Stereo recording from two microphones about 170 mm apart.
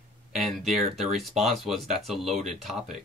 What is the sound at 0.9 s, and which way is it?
Speech, centre (ahead or behind).